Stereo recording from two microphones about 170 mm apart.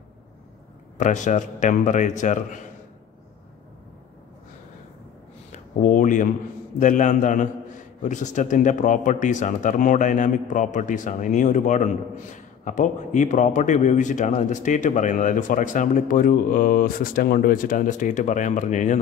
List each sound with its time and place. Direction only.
0.9 s a man's voice: 45° left (ahead or behind)
5.5 s a sound: 50° left (ahead or behind)
6.8 s a man's voice: 50° left (ahead or behind)